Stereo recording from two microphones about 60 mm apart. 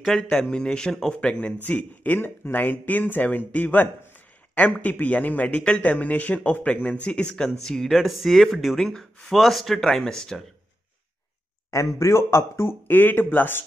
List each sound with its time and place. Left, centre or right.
0.0 s speech: centre; by 2.1 s left
2.1 s speech: left; by 10.4 s centre
11.7 s speech: left
12.8 s speech: left